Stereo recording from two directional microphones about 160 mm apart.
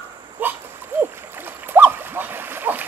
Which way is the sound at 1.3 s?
10° right (ahead or behind).